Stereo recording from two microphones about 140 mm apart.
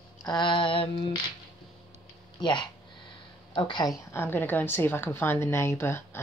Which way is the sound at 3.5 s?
35° left (ahead or behind).